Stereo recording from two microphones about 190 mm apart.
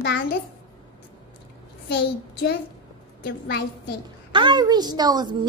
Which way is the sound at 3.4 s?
60° left (ahead or behind).